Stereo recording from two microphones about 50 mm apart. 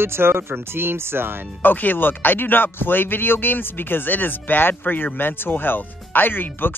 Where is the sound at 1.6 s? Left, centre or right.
Left.